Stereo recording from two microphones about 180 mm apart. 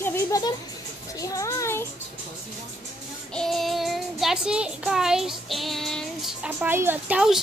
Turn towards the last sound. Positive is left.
turn(degrees=-5)  # may be behind; listen again after turning